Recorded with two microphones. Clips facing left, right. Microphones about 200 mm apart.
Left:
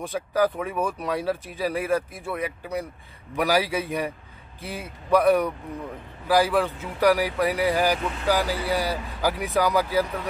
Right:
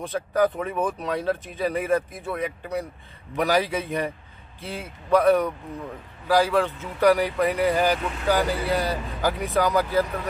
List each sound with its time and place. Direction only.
0.1 s speech: 5° left (ahead or behind)